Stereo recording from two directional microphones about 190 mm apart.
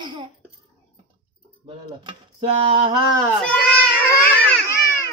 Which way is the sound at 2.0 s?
30° right (ahead or behind).